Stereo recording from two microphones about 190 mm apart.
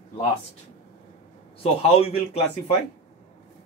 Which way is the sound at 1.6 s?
30° left (ahead or behind).